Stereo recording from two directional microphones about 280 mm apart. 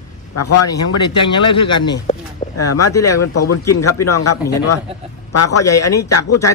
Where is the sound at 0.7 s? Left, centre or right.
Centre.